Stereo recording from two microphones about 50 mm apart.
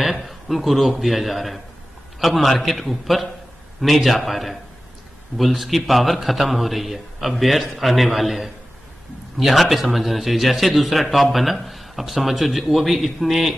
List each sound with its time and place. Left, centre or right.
0.0 s speech: centre